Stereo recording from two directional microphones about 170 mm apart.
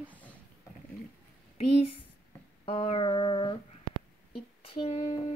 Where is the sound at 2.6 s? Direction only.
35° left (ahead or behind).